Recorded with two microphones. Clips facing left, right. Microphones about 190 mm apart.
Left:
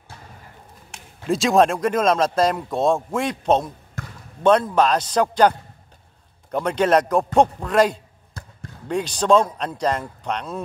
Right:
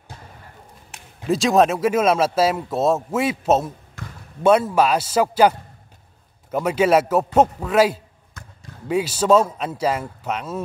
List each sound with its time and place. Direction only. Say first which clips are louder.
0.9 s a man's voice: right 1 dB; centre (ahead or behind)